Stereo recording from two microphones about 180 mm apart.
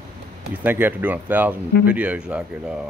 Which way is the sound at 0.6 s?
10° right (ahead or behind).